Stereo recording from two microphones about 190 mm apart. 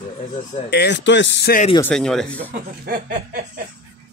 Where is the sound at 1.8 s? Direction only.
5° left (ahead or behind).